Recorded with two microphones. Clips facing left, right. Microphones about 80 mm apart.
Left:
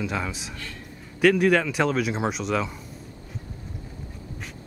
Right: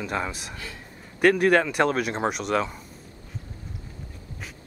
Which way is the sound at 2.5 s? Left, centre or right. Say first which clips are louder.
Right 2 dB; right.